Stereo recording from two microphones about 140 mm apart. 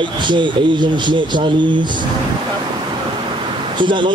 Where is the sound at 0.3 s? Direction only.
35° right (ahead or behind).